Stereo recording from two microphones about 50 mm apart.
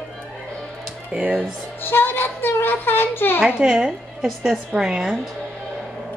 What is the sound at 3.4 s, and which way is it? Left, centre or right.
A woman's voice, centre.